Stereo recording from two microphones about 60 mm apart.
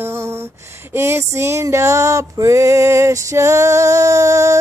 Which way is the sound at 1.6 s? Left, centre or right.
Right.